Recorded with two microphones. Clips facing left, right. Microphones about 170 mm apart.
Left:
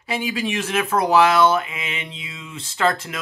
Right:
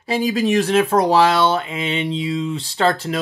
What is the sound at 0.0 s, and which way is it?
Speech, 35° right (ahead or behind).